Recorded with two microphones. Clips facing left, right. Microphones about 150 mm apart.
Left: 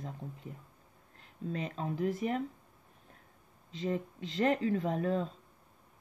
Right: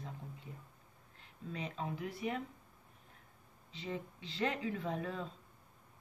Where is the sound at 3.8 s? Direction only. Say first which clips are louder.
Left 8 dB; 45° left (ahead or behind).